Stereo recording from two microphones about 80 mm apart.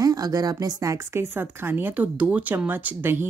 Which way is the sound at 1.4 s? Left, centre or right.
Right.